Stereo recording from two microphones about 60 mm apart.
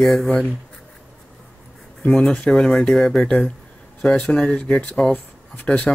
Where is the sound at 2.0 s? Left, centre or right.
Centre.